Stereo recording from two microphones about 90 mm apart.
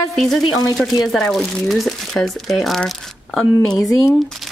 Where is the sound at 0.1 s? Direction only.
Centre (ahead or behind).